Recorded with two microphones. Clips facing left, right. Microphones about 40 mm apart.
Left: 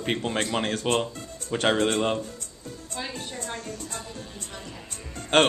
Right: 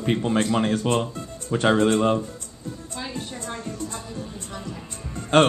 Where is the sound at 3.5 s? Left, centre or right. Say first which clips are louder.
Right 3 dB; right.